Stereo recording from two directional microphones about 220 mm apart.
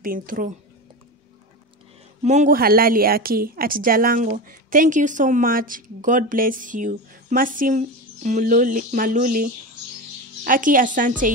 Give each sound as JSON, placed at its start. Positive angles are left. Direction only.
{"t": 0.0, "sound": "a woman's voice", "side_deg": -40}
{"t": 2.2, "sound": "a woman's voice", "side_deg": -35}